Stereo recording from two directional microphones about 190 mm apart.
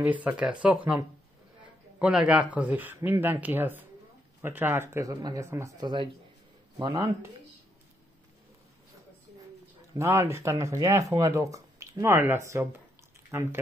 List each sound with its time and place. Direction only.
0.0 s speech: 5° right (ahead or behind)
9.9 s speech: 15° right (ahead or behind)